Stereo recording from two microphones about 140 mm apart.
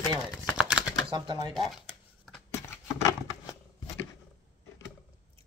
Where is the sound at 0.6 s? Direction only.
5° right (ahead or behind).